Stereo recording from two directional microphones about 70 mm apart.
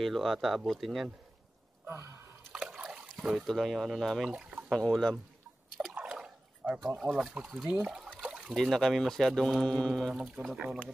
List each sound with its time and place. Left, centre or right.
0.0 s speech: centre
1.9 s speech: right
2.6 s splash: centre
3.2 s speech: centre
4.3 s a sound: centre
4.6 s speech: centre
5.9 s a sound: centre
7.0 s speech: centre
8.2 s a sound: centre
8.5 s speech: centre
10.1 s speech: centre